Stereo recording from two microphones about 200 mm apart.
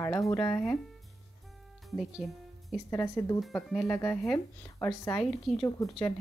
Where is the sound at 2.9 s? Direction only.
15° left (ahead or behind).